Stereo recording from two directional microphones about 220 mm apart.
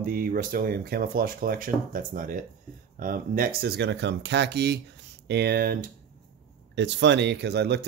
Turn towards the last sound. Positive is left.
turn(degrees=-50)  # may be behind; listen again after turning